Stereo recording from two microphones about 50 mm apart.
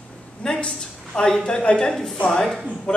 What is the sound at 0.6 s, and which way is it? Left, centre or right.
A man's voice, centre.